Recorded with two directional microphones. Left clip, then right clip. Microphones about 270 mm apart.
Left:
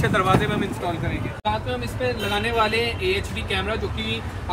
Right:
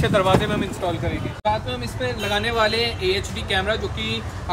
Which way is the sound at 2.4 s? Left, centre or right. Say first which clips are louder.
Right 1 dB; centre.